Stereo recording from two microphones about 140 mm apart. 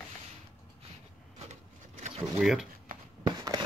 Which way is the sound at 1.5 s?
55° right (ahead or behind).